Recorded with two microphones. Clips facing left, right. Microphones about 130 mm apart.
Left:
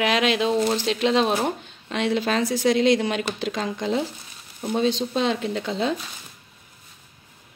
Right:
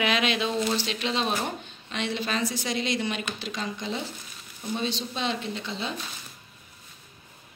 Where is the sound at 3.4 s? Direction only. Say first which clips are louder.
Left 7 dB; 65° left (ahead or behind).